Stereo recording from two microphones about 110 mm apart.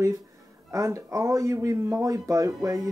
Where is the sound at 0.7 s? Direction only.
30° right (ahead or behind).